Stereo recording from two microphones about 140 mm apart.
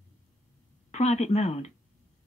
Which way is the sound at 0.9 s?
55° left (ahead or behind).